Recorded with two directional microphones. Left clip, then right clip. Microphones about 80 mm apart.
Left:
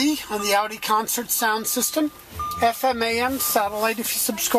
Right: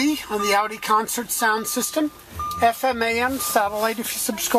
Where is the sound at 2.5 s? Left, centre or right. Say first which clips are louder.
Right 1 dB; centre.